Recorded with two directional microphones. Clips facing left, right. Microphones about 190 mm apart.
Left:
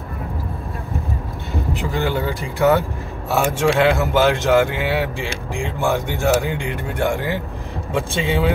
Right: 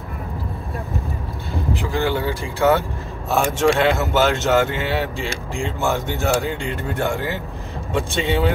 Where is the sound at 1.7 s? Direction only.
15° left (ahead or behind).